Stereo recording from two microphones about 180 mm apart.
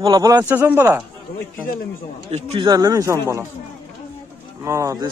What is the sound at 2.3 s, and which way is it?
Speech, 30° right (ahead or behind).